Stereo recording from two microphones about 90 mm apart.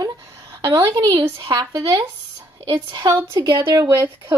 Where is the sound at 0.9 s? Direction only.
55° right (ahead or behind).